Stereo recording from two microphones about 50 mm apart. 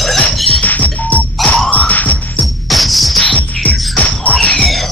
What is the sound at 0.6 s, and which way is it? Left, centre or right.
Music, left.